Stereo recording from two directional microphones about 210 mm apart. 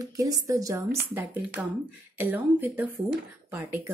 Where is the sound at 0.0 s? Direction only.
15° right (ahead or behind).